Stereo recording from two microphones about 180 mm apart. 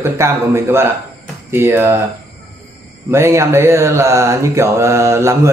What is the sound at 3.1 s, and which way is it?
Speech, 15° right (ahead or behind).